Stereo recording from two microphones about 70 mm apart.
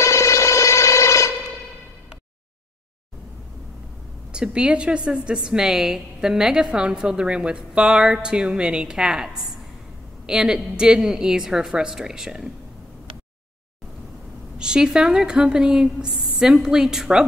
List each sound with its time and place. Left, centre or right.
0.0 s a sound: left
4.3 s a woman's voice: centre
14.6 s a woman's voice: centre